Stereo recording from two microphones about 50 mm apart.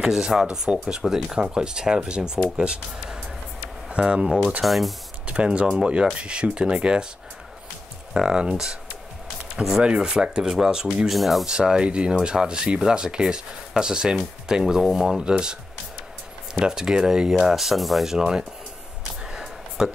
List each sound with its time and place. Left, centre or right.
0.0 s speech: centre
4.6 s speech: centre
5.2 s speech: right
8.2 s speech: centre
11.1 s speech: centre
11.4 s speech: centre
16.5 s speech: centre
19.8 s speech: centre